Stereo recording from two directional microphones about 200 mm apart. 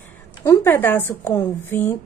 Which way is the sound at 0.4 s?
10° left (ahead or behind).